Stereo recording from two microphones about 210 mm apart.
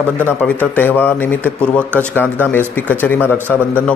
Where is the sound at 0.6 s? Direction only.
10° left (ahead or behind).